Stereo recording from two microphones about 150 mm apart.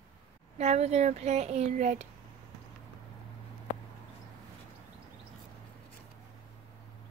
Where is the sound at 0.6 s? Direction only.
45° right (ahead or behind).